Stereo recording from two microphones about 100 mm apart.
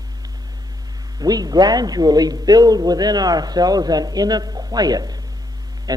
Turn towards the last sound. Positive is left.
turn(degrees=-40)  # may be behind; listen again after turning